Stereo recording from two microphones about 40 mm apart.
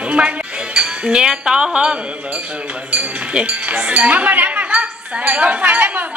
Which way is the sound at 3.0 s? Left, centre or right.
Right.